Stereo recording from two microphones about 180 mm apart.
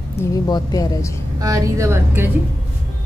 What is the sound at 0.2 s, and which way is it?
Speech, 20° left (ahead or behind).